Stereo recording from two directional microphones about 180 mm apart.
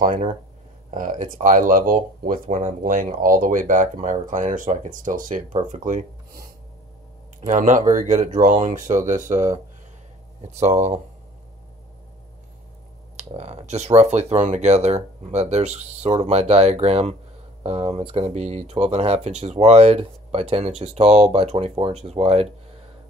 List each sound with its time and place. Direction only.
0.0 s speech: 50° right (ahead or behind)
7.4 s speech: 45° right (ahead or behind)
10.5 s speech: 40° right (ahead or behind)
13.1 s speech: 35° right (ahead or behind)